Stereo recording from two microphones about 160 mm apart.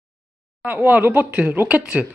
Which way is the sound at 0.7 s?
10° right (ahead or behind).